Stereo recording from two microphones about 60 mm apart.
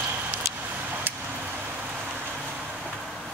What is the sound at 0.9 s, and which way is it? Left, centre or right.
Vehicle, right.